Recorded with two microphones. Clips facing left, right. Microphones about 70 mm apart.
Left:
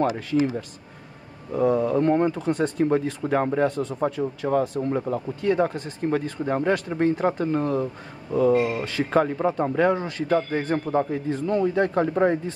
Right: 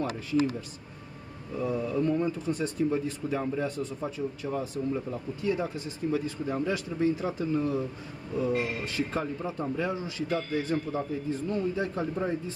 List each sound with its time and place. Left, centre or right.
0.0 s speech: left
1.5 s speech: left
11.0 s speech: left